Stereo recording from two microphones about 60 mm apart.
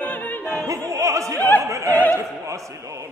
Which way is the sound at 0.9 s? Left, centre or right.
Right.